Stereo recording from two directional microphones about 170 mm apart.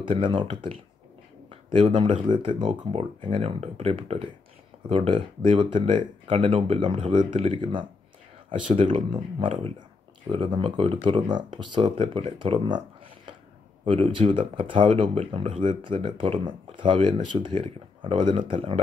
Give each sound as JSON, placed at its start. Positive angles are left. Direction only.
{"t": 0.0, "sound": "speech", "side_deg": -30}